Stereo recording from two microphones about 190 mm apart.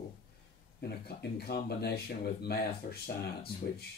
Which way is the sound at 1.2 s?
55° left (ahead or behind).